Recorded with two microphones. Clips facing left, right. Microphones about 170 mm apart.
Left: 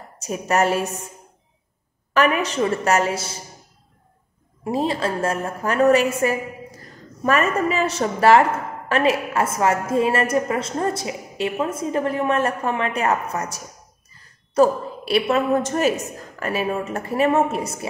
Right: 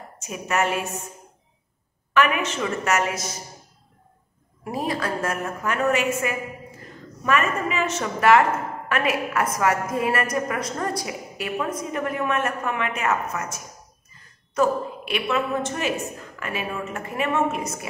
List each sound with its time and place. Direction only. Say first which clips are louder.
0.2 s a woman's voice: left 4 dB; 35° left (ahead or behind)
2.1 s a woman's voice: left 3 dB; 35° left (ahead or behind)
4.6 s a woman's voice: left 4 dB; 25° left (ahead or behind)